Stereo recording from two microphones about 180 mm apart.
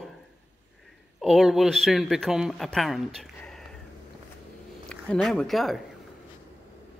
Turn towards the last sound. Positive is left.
turn(degrees=0)  # may be behind; listen again after turning